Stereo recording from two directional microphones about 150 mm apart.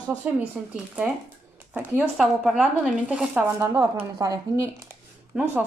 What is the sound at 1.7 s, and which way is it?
Speech, 10° right (ahead or behind).